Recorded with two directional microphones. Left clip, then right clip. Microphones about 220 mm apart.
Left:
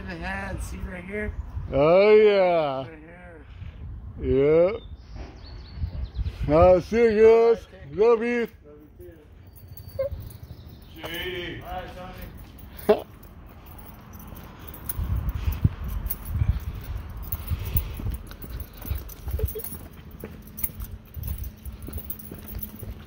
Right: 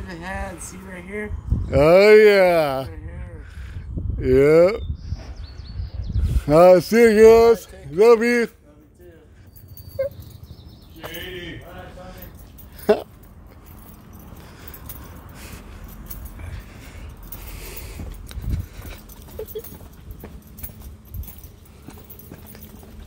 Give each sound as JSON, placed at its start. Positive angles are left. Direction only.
{"t": 0.0, "sound": "speech", "side_deg": 0}
{"t": 1.7, "sound": "speech", "side_deg": -35}
{"t": 4.2, "sound": "speech", "side_deg": -35}
{"t": 6.3, "sound": "speech", "side_deg": -30}
{"t": 10.0, "sound": "a sound", "side_deg": -25}
{"t": 12.8, "sound": "a sound", "side_deg": -20}